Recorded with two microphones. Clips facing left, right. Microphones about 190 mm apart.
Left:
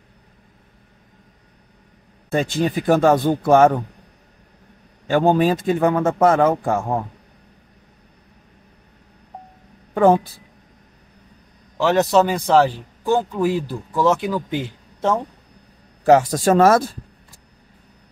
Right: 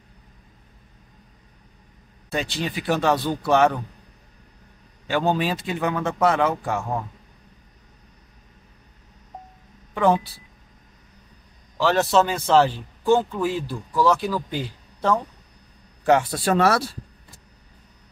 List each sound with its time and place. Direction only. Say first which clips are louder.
2.3 s a man's voice: left 7 dB; 50° left (ahead or behind)
5.0 s a man's voice: left 6 dB; 50° left (ahead or behind)
9.9 s a man's voice: left 5 dB; 45° left (ahead or behind)
11.8 s a man's voice: left 3 dB; 15° left (ahead or behind)
16.1 s a man's voice: left 5 dB; 40° left (ahead or behind)